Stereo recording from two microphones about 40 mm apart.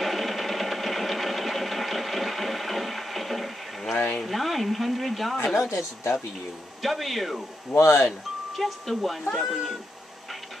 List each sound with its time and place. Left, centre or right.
0.0 s sewing machine: centre
4.3 s a sound: centre
5.7 s speech: left
6.8 s speech: centre